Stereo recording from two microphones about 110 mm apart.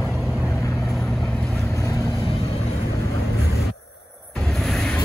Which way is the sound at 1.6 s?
30° left (ahead or behind).